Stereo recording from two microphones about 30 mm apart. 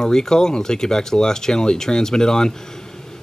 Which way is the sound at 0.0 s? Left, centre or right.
Centre.